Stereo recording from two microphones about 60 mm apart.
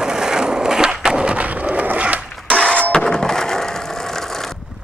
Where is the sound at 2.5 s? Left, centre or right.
Centre.